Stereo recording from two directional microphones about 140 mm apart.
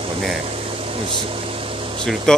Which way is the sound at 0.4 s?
45° right (ahead or behind).